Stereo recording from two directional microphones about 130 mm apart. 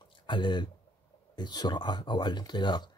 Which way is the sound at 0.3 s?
35° left (ahead or behind).